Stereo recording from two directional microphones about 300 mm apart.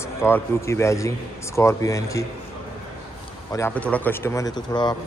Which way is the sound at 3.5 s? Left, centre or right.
Centre.